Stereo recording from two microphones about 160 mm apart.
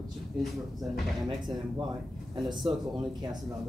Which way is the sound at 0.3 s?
5° right (ahead or behind).